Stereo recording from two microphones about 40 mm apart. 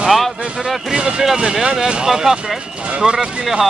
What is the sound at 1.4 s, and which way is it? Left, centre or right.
Speech, centre.